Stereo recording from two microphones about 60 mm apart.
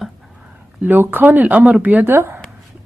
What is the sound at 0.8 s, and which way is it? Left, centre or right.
Speech, right.